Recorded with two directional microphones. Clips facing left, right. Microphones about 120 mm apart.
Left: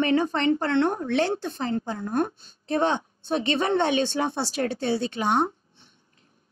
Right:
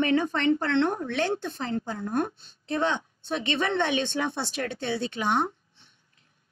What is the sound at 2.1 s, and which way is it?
A woman's voice, 35° left (ahead or behind).